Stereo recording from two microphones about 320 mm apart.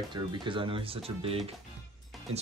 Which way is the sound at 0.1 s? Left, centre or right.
Centre.